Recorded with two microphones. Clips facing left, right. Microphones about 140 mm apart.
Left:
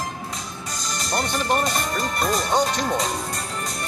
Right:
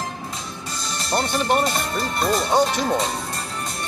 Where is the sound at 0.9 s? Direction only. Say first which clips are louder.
Right 3 dB; centre (ahead or behind).